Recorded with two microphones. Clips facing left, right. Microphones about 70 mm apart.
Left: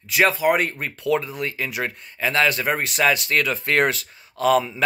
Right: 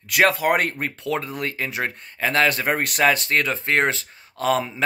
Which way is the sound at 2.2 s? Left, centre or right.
Right.